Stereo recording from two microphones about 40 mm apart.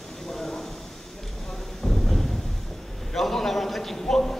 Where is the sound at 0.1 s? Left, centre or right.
Centre.